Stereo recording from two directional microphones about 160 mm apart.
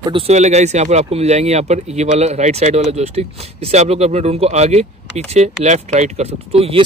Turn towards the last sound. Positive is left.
turn(degrees=-35)  # may be behind; listen again after turning